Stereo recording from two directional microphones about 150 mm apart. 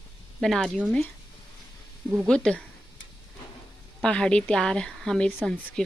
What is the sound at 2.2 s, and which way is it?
Speech, 5° left (ahead or behind).